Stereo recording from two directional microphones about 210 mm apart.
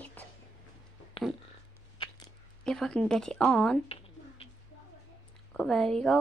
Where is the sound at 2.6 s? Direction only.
5° left (ahead or behind).